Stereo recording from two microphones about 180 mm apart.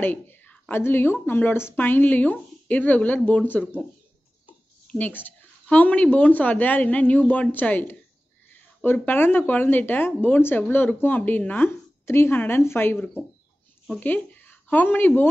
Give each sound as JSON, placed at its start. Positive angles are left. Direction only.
{"t": 0.0, "sound": "speech", "side_deg": 10}
{"t": 4.8, "sound": "speech", "side_deg": 10}